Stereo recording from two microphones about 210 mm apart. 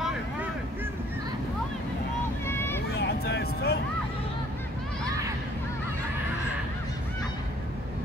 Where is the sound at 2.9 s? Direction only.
50° left (ahead or behind).